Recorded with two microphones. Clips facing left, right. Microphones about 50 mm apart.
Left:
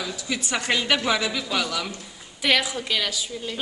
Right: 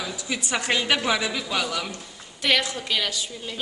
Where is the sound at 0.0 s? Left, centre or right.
Centre.